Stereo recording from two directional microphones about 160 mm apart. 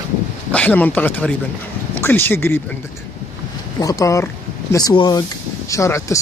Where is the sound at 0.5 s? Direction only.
10° left (ahead or behind).